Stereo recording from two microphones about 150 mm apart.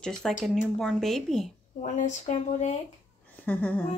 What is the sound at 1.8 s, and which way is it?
Speech, 55° left (ahead or behind).